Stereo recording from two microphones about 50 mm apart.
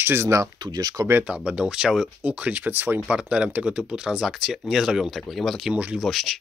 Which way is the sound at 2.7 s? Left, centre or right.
Right.